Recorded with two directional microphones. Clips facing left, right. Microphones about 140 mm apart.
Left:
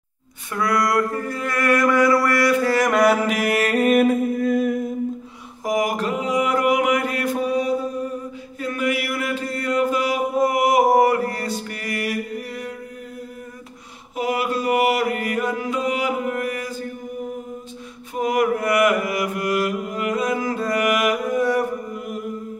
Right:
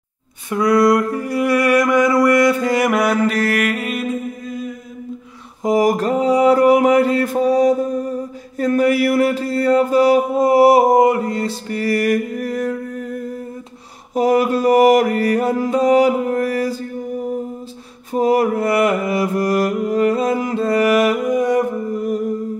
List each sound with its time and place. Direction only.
0.5 s a sound: 20° right (ahead or behind)
2.9 s music: centre (ahead or behind)
3.5 s music: 30° left (ahead or behind)
3.8 s mantra: 55° left (ahead or behind)
5.6 s mantra: 30° right (ahead or behind)
14.1 s mantra: 40° right (ahead or behind)
18.1 s mantra: 35° right (ahead or behind)
21.2 s mantra: 15° right (ahead or behind)
21.9 s music: 35° right (ahead or behind)